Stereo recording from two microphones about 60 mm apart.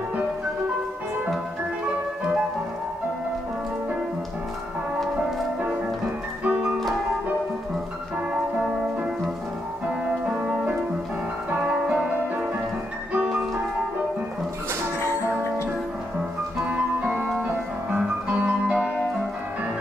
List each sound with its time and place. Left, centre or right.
10.2 s music: centre
11.9 s music: right
16.6 s ice cream truck: right
17.9 s music: right